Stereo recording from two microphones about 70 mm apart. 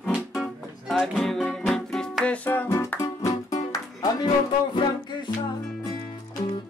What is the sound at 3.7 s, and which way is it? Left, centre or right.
Music, left.